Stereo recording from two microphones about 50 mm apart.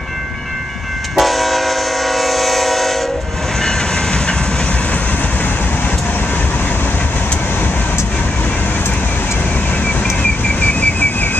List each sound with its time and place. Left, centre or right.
1.1 s train: centre
3.6 s train: centre
10.6 s whistle: left